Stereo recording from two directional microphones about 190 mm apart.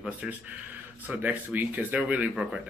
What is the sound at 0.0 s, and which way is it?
Speech, 5° right (ahead or behind).